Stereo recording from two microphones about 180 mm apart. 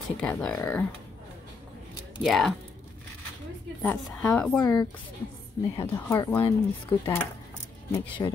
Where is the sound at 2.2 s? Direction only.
Centre (ahead or behind).